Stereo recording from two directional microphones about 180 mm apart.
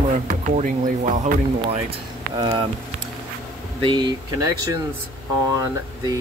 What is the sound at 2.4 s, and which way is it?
Speech, 20° right (ahead or behind).